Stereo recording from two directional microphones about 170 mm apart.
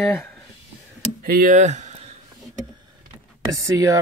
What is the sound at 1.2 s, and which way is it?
Speech, 60° right (ahead or behind).